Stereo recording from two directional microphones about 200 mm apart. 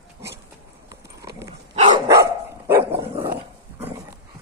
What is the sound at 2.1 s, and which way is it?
Dog, 15° right (ahead or behind).